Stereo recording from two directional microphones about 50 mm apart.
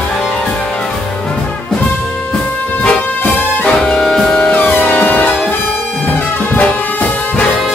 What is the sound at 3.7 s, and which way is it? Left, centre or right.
Music, centre.